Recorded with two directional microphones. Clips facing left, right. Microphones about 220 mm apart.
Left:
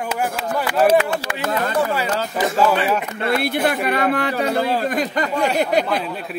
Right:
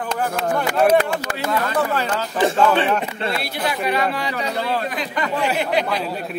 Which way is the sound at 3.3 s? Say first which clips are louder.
Left 10 dB; 50° left (ahead or behind).